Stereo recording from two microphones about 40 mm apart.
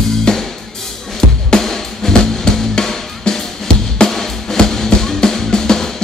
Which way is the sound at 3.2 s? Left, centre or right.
Centre.